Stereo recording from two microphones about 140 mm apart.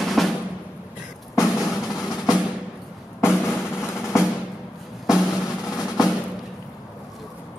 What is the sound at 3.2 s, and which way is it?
Drum, 15° left (ahead or behind).